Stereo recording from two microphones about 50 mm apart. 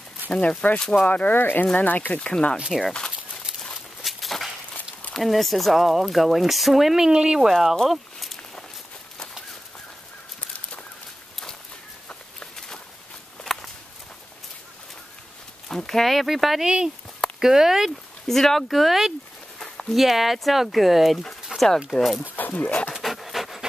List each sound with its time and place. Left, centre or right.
0.3 s speech: left
1.3 s speech: left
2.7 s speech: centre
4.0 s a sound: centre
5.1 s speech: centre
7.1 s speech: centre
7.9 s a sound: centre
12.5 s walk: centre
15.7 s speech: centre
18.2 s speech: centre
22.3 s speech: left
23.0 s pant: centre